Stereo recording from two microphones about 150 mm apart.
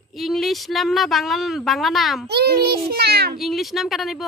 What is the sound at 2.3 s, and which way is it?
A child's voice, 90° right.